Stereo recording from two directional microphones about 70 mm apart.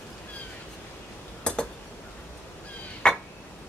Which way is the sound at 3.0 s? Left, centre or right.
Centre.